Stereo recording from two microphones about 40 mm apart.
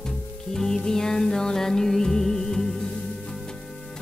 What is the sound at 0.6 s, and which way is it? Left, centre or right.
Music, centre.